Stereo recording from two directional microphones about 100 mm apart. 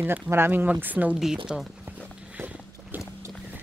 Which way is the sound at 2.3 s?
15° right (ahead or behind).